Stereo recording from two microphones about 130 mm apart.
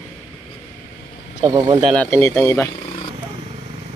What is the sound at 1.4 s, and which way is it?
Speech, 30° right (ahead or behind).